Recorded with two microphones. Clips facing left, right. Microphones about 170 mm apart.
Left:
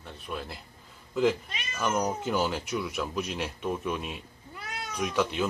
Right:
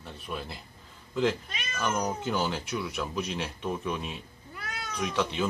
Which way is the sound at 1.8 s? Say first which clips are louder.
Left 2 dB; 5° left (ahead or behind).